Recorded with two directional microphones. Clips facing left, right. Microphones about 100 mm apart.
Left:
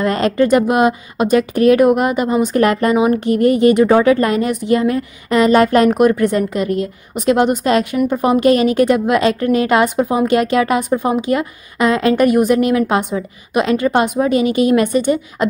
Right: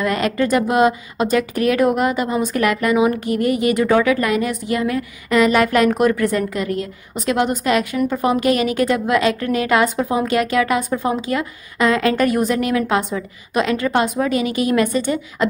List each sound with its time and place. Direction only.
0.0 s a woman's voice: 30° left (ahead or behind)
5.9 s a woman's voice: 20° left (ahead or behind)